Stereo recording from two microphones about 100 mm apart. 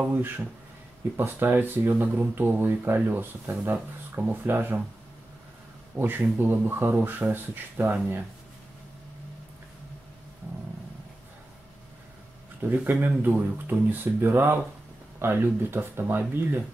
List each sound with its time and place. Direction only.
0.0 s speech: 15° right (ahead or behind)
5.9 s speech: 20° right (ahead or behind)
12.6 s speech: 20° right (ahead or behind)